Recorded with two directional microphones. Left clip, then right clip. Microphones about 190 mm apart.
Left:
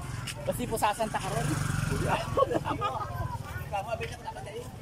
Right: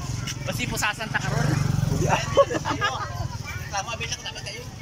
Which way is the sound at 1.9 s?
Centre (ahead or behind).